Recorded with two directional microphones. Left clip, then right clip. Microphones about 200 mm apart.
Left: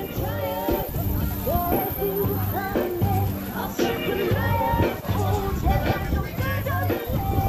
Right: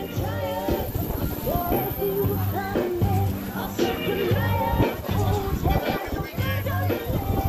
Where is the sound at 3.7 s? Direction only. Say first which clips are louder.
Even; 50° right (ahead or behind).